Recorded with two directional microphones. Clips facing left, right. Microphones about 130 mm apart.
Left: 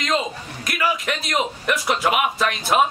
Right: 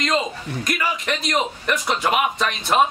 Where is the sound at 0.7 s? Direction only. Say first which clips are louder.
Left 2 dB; 5° left (ahead or behind).